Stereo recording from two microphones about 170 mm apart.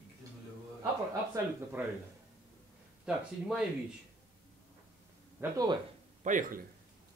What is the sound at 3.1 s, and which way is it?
Speech, 5° right (ahead or behind).